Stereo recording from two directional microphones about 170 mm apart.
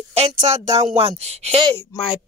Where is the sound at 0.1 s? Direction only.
40° right (ahead or behind).